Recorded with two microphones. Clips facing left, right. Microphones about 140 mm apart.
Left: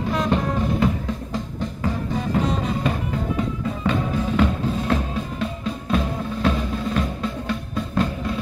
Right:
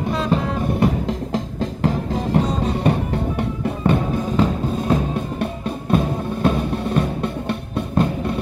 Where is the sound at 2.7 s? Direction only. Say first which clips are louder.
Right 4 dB; 65° right (ahead or behind).